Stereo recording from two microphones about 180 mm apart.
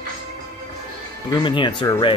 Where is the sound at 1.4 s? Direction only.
25° left (ahead or behind).